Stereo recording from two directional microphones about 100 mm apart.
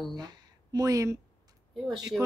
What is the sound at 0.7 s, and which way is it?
Speech, 35° right (ahead or behind).